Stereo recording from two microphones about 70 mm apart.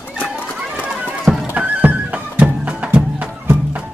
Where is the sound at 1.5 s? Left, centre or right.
Right.